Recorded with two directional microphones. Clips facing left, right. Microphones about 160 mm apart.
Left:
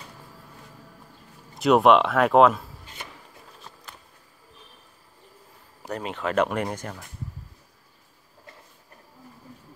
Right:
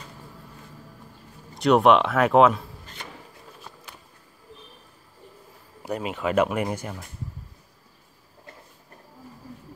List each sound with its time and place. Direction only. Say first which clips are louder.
1.5 s speech: even; centre (ahead or behind)
5.8 s speech: right 2 dB; 10° right (ahead or behind)